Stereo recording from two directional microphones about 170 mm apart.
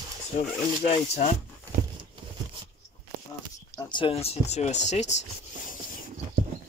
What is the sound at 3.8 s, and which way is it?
Speech, 25° left (ahead or behind).